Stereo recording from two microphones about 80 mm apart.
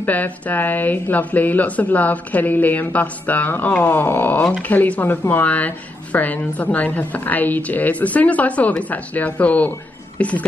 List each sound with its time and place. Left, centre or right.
0.0 s a woman's voice: left